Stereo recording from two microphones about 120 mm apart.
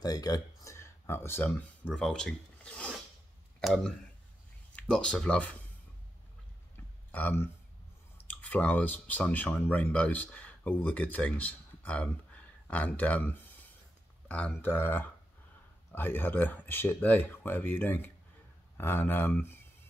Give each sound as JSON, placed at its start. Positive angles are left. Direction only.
{"t": 0.0, "sound": "speech", "side_deg": 30}
{"t": 7.1, "sound": "speech", "side_deg": 15}